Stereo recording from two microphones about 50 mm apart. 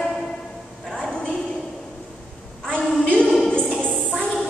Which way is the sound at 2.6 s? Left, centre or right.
Left.